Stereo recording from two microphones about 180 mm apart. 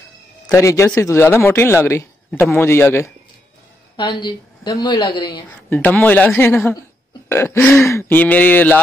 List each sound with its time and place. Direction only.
0.5 s speech: 15° left (ahead or behind)
3.9 s a woman's voice: 25° left (ahead or behind)
5.7 s speech: 10° left (ahead or behind)